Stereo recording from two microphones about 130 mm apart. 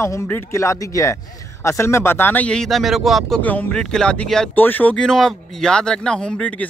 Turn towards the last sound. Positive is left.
turn(degrees=10)  # may be behind; listen again after turning